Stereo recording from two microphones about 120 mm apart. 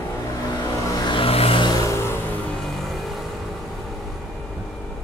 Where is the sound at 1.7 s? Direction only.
30° left (ahead or behind).